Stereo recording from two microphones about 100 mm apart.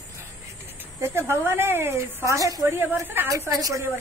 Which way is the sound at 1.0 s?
25° right (ahead or behind).